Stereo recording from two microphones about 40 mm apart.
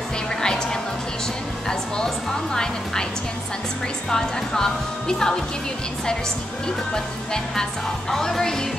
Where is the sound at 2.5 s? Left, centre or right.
Centre.